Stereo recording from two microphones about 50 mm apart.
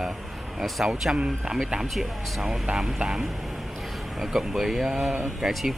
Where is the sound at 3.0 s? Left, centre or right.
Centre.